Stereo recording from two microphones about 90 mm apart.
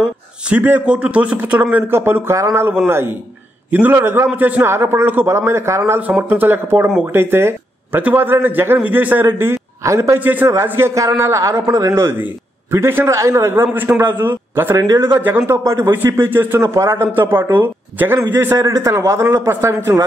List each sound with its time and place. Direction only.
0.5 s a man's voice: 20° right (ahead or behind)
10.2 s a man's voice: 20° right (ahead or behind)
18.6 s a man's voice: 40° right (ahead or behind)